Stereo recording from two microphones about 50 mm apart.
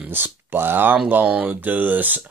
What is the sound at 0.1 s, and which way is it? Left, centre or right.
Speech, right.